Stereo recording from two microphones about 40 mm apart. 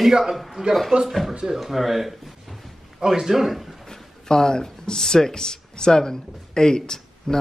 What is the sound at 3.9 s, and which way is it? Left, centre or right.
Speech, centre.